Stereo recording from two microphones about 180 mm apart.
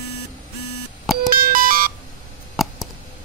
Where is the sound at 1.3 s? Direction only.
50° right (ahead or behind).